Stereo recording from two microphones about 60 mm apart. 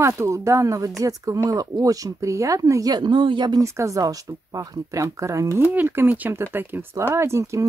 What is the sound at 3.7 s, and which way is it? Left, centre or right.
Speech, right.